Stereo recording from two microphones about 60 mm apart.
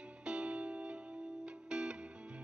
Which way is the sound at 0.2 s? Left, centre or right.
Centre.